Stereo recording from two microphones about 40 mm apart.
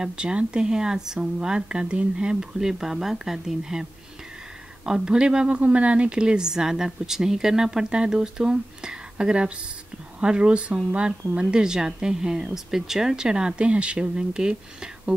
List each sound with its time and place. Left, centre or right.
0.0 s speech: right
2.6 s speech: centre
4.8 s speech: centre
5.5 s speech: right
6.1 s speech: centre